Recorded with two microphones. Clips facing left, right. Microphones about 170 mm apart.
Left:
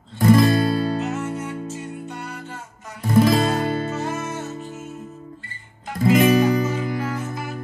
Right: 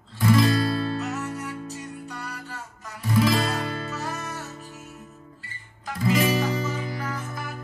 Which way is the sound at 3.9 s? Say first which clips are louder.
Left 6 dB; 25° left (ahead or behind).